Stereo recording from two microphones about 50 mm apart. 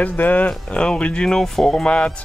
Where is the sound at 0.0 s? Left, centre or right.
Left.